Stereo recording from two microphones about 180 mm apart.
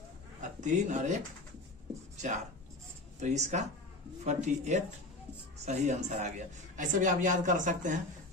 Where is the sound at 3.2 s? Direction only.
40° right (ahead or behind).